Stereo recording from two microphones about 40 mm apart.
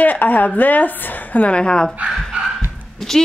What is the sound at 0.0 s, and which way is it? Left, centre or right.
A woman's voice, left.